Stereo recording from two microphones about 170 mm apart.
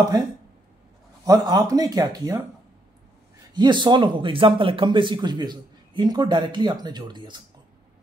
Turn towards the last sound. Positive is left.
turn(degrees=-25)  # may be behind; listen again after turning